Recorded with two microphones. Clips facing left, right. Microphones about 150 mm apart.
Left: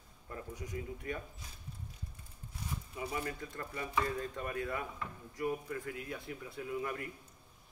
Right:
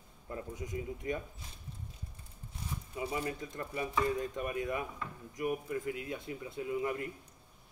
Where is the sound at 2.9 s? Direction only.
25° right (ahead or behind).